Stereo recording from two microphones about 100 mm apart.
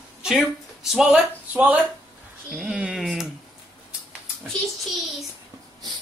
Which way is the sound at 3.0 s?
5° right (ahead or behind).